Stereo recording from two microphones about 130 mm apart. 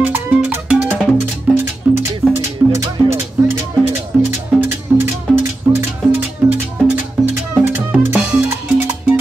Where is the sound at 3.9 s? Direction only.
20° right (ahead or behind).